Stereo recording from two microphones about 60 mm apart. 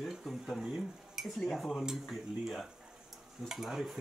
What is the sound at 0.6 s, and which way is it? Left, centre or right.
Speech, centre.